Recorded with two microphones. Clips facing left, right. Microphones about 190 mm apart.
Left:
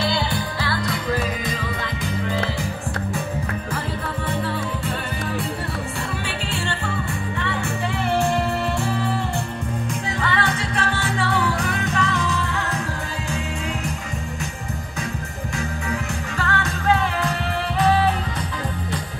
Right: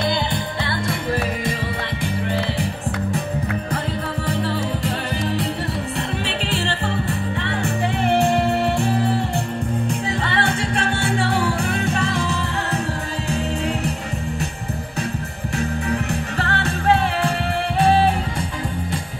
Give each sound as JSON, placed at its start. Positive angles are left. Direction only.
{"t": 0.0, "sound": "music", "side_deg": -20}
{"t": 8.3, "sound": "music", "side_deg": -30}
{"t": 10.4, "sound": "music", "side_deg": -30}
{"t": 15.5, "sound": "music", "side_deg": -35}